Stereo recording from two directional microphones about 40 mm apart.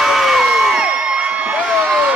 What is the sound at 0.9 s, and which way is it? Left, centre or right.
Crowd, right.